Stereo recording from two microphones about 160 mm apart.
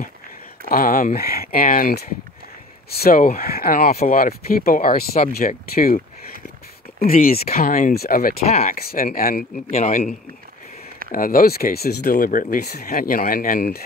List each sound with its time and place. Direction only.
0.7 s speech: 65° left (ahead or behind)
7.0 s speech: 65° left (ahead or behind)
8.5 s speech: 40° left (ahead or behind)
8.7 s speech: 65° left (ahead or behind)
9.7 s speech: 45° left (ahead or behind)
11.1 s speech: 65° left (ahead or behind)